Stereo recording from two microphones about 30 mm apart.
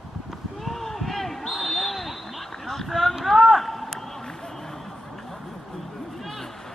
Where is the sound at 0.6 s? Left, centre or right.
Centre.